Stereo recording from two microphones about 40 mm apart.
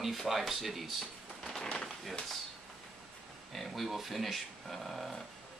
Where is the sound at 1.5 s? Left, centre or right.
Centre.